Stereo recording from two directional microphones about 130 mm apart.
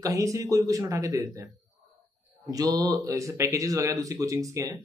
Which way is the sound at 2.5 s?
30° right (ahead or behind).